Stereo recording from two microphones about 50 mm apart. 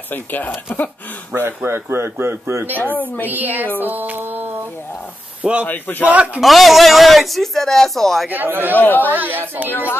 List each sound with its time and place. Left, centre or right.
0.1 s a man's voice: left
1.3 s a man's voice: right
3.3 s a child's voice: right
3.8 s a sound: right
5.4 s speech: right
5.7 s a man's voice: left
6.4 s a man's voice: centre
8.3 s a child's voice: right
8.7 s a man's voice: left
9.1 s a child's voice: right
9.7 s a man's voice: left